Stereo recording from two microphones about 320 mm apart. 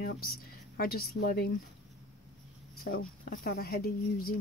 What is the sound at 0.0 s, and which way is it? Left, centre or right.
A woman's voice, left.